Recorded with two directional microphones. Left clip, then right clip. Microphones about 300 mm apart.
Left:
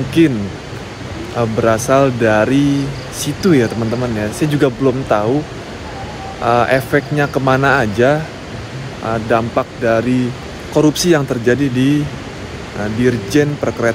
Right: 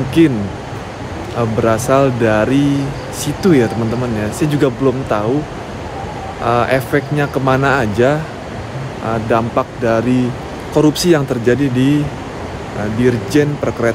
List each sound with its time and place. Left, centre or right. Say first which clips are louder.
0.2 s speech: right 1 dB; centre
1.4 s speech: left 1 dB; centre
6.4 s speech: left 1 dB; centre
13.0 s speech: even; centre